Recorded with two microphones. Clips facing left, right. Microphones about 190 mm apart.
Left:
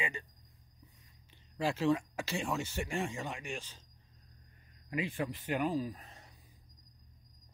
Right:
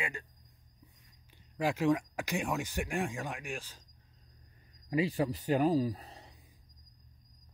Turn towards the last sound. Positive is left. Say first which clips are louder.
# right 6 dB
turn(degrees=-35)  # may be behind; listen again after turning